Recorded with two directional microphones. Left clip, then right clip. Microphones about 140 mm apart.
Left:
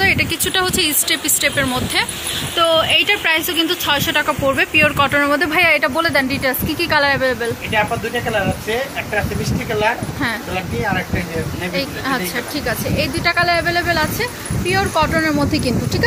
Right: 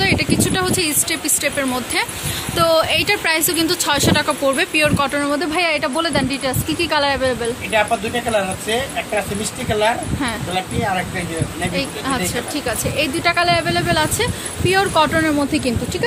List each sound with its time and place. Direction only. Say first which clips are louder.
0.0 s a woman's voice: left 2 dB; 10° right (ahead or behind)
12.6 s speech: even; 25° right (ahead or behind)
15.1 s a woman's voice: even; 20° right (ahead or behind)